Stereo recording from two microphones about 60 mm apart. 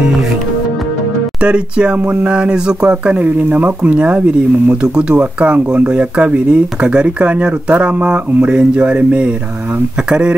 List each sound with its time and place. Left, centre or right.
1.4 s speech: centre